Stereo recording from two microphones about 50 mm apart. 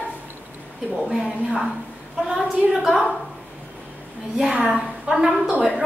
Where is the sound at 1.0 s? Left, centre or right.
Centre.